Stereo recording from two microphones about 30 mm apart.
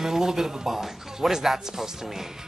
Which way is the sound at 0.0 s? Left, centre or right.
Centre.